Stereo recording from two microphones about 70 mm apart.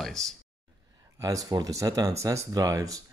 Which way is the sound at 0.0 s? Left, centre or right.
Centre.